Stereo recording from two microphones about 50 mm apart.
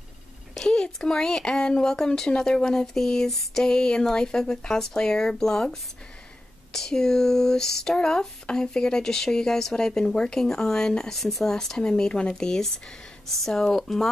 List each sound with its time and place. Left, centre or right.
0.7 s speech: centre